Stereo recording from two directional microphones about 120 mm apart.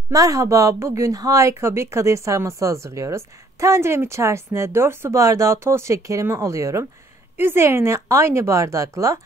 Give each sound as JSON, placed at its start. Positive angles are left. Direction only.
{"t": 0.1, "sound": "speech", "side_deg": -30}